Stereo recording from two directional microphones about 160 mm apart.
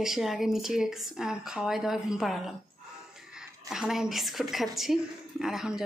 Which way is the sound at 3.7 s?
5° right (ahead or behind).